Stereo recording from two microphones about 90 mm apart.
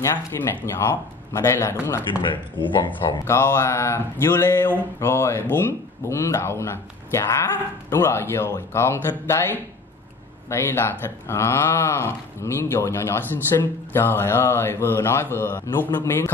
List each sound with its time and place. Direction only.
0.4 s speech: 20° left (ahead or behind)
1.3 s speech: 30° left (ahead or behind)
2.3 s speech: 65° left (ahead or behind)
3.3 s speech: 30° left (ahead or behind)
10.5 s speech: 30° left (ahead or behind)